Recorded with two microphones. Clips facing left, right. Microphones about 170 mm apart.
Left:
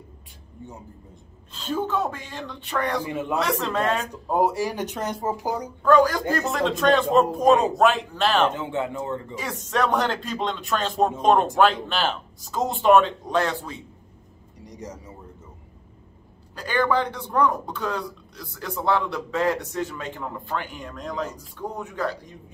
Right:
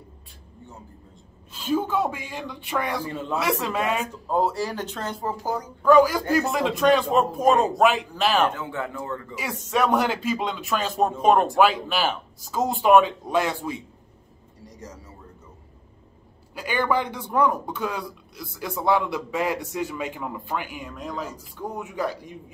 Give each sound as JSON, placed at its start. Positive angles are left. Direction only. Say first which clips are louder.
{"t": 1.5, "sound": "a man's voice", "louder": "right 2 dB", "side_deg": -10}
{"t": 3.0, "sound": "speech", "louder": "left 2 dB", "side_deg": 15}
{"t": 3.3, "sound": "a man's voice", "louder": "even", "side_deg": -5}
{"t": 4.1, "sound": "speech", "louder": "left 1 dB", "side_deg": 15}
{"t": 5.8, "sound": "speech", "louder": "right 2 dB", "side_deg": -5}
{"t": 8.5, "sound": "speech", "louder": "left 3 dB", "side_deg": 25}
{"t": 9.4, "sound": "a man's voice", "louder": "right 2 dB", "side_deg": -10}
{"t": 14.6, "sound": "a sound", "louder": "left 4 dB", "side_deg": 20}
{"t": 16.5, "sound": "a man's voice", "louder": "left 1 dB", "side_deg": -10}